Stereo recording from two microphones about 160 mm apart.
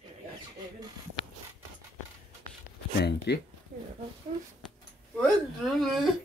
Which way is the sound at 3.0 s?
90° left.